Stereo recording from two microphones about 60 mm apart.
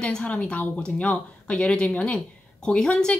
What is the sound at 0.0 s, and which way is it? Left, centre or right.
A woman's voice, centre.